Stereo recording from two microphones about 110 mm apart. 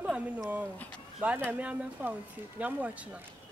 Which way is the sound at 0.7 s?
15° left (ahead or behind).